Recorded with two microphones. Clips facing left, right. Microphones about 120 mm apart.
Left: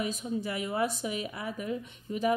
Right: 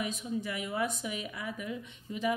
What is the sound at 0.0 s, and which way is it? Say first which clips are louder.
A woman's voice: left 2 dB; 35° left (ahead or behind).